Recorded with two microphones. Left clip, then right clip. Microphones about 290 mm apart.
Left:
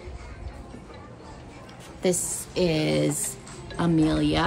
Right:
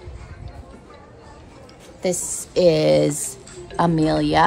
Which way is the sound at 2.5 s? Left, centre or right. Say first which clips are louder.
Right 9 dB; centre.